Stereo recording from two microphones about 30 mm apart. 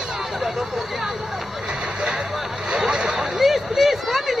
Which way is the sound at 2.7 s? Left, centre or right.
Right.